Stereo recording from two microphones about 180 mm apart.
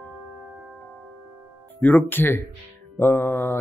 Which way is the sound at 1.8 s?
10° left (ahead or behind).